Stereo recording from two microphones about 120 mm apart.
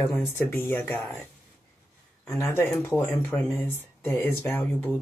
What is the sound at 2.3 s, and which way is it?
Speech, 20° left (ahead or behind).